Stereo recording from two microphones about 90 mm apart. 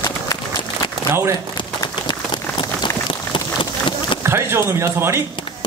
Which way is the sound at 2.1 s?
60° left (ahead or behind).